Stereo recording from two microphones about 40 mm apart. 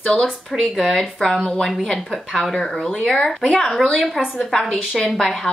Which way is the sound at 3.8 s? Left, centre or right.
Centre.